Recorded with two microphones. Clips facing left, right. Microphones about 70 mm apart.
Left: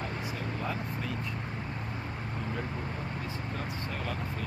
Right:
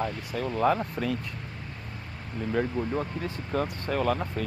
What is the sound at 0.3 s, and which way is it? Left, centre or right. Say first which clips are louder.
Speech: right 14 dB; right.